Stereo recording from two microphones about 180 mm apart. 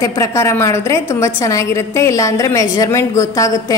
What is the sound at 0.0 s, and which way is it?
A woman's voice, 20° left (ahead or behind).